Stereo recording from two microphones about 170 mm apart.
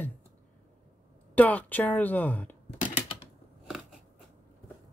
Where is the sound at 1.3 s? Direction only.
10° left (ahead or behind).